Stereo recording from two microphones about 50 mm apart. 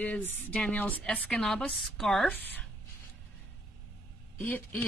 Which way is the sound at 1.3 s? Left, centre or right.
Centre.